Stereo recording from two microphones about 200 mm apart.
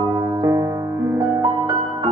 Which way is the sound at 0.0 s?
20° right (ahead or behind).